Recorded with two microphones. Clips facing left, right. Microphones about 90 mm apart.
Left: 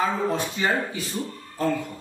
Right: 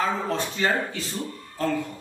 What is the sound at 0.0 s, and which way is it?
A man's voice, 15° left (ahead or behind).